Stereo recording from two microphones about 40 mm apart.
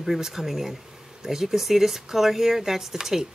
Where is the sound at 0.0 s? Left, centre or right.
Centre.